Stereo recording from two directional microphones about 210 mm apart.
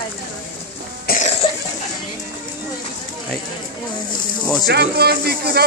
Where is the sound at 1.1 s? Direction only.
30° left (ahead or behind).